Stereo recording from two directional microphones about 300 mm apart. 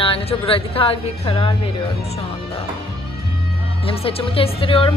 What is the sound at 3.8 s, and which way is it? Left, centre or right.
Speech, centre.